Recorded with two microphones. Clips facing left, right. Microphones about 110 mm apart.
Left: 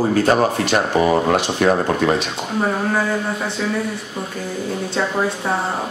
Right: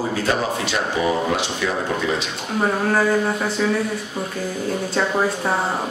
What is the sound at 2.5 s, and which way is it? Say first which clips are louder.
Speech: right 1 dB; centre (ahead or behind).